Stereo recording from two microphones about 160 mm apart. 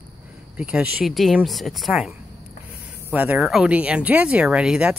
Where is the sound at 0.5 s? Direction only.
5° right (ahead or behind).